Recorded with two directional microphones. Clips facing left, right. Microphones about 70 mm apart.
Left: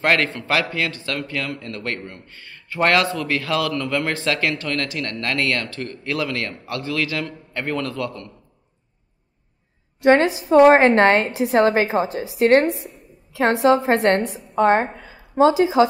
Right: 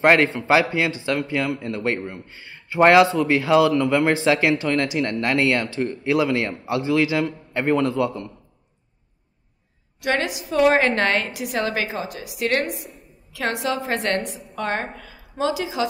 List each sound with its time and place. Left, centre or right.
0.0 s a man's voice: centre
9.9 s a woman's voice: left